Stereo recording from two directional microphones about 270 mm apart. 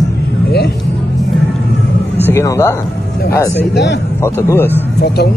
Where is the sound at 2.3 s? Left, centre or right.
Centre.